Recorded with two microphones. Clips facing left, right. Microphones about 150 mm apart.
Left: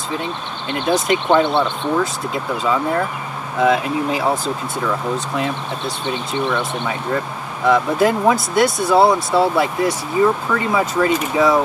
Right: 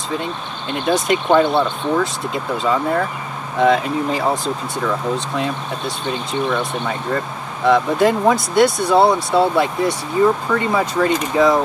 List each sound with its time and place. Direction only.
0.7 s speech: centre (ahead or behind)
6.6 s speech: 5° left (ahead or behind)